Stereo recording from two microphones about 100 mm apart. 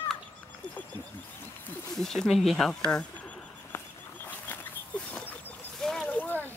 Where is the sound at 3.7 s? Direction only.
25° left (ahead or behind).